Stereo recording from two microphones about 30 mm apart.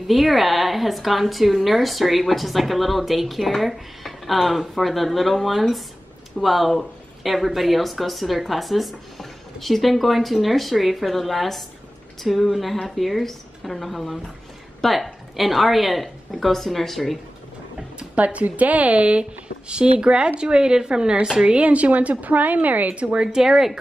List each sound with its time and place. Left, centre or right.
0.0 s a woman's voice: centre
16.3 s speech: centre
18.1 s a woman's voice: right
21.5 s a woman's voice: right
22.9 s speech: right
23.3 s a woman's voice: centre